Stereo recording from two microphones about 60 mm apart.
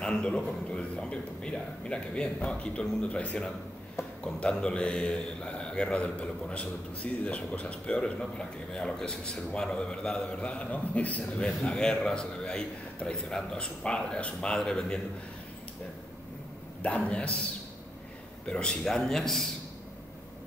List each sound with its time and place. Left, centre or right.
0.0 s a sound: centre
0.7 s a man's voice: centre
11.3 s a man's voice: centre
16.8 s a man's voice: left
18.4 s a man's voice: centre